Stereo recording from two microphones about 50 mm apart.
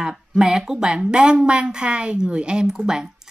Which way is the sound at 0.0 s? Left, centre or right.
Centre.